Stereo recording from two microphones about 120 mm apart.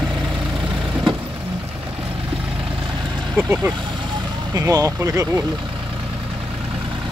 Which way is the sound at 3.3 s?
15° right (ahead or behind).